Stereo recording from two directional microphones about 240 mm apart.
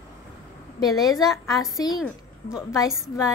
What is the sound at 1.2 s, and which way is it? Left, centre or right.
Speech, centre.